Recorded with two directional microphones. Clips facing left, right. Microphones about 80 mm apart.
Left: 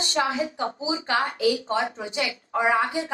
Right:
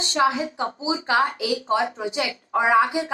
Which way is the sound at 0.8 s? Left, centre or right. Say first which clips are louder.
Right 5 dB; right.